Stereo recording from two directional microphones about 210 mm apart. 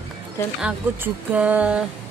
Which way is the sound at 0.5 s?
5° right (ahead or behind).